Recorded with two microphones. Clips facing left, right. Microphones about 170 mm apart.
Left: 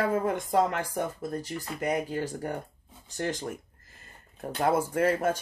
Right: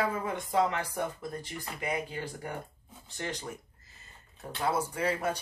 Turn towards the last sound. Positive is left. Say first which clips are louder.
# left 6 dB
turn(degrees=45)  # may be behind; listen again after turning